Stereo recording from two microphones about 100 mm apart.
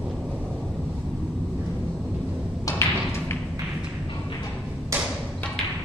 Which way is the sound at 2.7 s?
25° left (ahead or behind).